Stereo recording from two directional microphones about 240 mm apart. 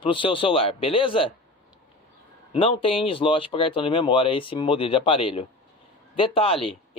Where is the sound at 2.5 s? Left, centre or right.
Left.